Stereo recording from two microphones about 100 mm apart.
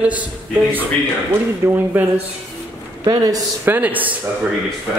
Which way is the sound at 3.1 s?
40° right (ahead or behind).